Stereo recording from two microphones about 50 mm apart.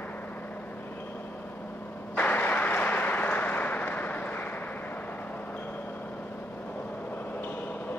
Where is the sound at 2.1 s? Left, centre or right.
Left.